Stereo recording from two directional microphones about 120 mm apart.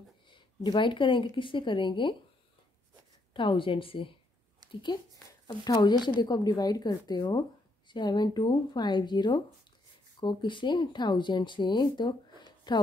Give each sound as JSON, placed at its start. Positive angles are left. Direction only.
{"t": 0.3, "sound": "speech", "side_deg": 40}
{"t": 3.3, "sound": "speech", "side_deg": 45}
{"t": 5.5, "sound": "speech", "side_deg": 35}